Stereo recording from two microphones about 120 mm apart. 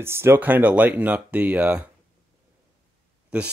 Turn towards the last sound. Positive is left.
turn(degrees=-10)  # may be behind; listen again after turning